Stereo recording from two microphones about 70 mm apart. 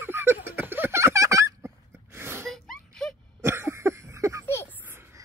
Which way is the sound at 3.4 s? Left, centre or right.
Right.